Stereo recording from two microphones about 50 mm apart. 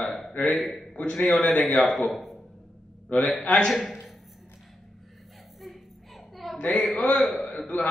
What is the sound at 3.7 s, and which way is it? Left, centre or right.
Speech, centre.